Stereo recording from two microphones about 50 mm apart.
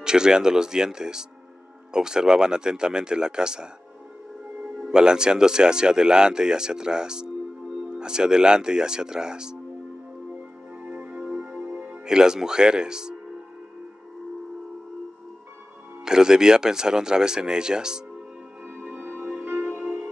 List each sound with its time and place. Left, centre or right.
0.0 s speech: centre
10.8 s music: right
16.0 s speech: centre
18.8 s music: right